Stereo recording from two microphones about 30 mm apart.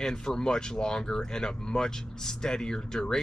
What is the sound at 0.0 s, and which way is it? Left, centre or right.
Speech, left.